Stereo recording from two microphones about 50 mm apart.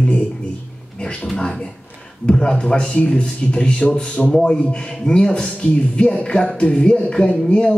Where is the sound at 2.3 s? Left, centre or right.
Centre.